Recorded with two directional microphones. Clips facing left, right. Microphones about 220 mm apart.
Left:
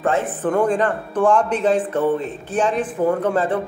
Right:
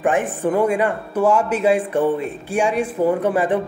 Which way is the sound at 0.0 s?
15° right (ahead or behind).